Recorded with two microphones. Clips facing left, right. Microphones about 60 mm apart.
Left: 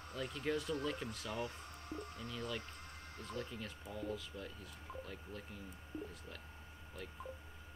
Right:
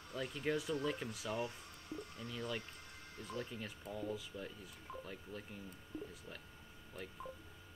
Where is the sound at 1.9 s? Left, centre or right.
Left.